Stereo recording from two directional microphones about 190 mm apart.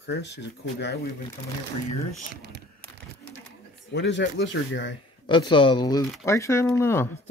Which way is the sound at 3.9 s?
65° left (ahead or behind).